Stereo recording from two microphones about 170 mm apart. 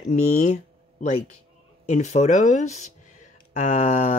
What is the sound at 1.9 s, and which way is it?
Speech, 45° left (ahead or behind).